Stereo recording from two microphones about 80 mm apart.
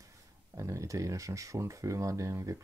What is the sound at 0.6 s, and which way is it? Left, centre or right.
Speech, right.